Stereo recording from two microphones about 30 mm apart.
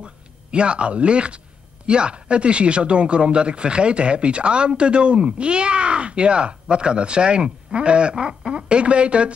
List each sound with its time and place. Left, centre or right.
0.0 s speech: right